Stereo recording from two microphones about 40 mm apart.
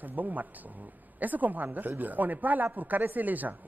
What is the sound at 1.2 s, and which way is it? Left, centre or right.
A woman's voice, right.